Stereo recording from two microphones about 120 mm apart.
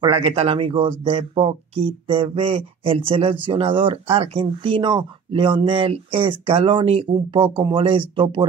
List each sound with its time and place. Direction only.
0.0 s speech: 45° right (ahead or behind)